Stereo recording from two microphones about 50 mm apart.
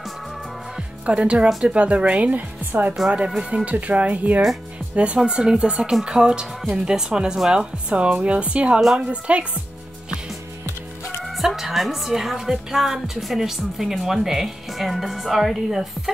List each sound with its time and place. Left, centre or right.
0.7 s music: right
1.6 s speech: right
3.3 s speech: right
7.9 s speech: right
11.2 s a woman's voice: centre